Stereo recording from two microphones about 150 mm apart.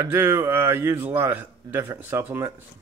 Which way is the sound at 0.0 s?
20° right (ahead or behind).